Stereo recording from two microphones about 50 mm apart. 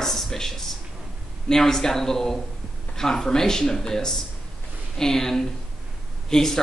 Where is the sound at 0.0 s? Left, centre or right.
Centre.